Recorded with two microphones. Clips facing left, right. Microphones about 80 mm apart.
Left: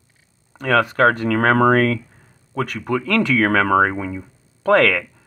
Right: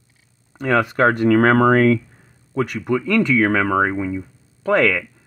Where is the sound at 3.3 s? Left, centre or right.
Centre.